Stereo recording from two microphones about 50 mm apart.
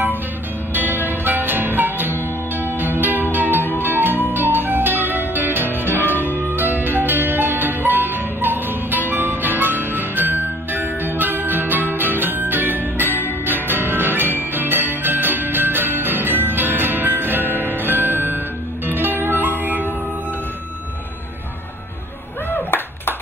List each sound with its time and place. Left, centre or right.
0.7 s music: right
22.5 s clapping: left